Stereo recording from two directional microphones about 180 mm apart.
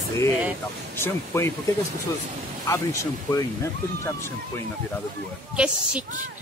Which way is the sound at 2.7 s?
15° left (ahead or behind).